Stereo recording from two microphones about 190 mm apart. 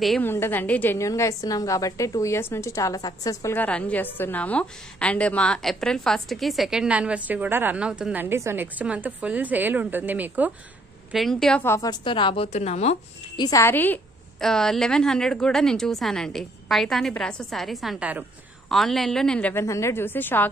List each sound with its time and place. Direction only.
0.0 s a woman's voice: centre (ahead or behind)
11.6 s a woman's voice: 15° left (ahead or behind); by 12.9 s 35° left (ahead or behind)
13.4 s a woman's voice: 15° left (ahead or behind)